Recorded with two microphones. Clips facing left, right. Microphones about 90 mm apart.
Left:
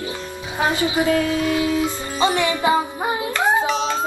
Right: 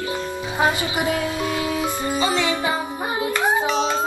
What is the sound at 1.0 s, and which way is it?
Music, 20° right (ahead or behind).